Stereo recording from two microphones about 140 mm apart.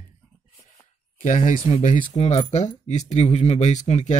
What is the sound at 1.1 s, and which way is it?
Speech, 60° left (ahead or behind).